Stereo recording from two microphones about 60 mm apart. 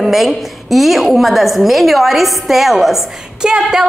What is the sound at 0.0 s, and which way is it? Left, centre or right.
A woman's voice, centre.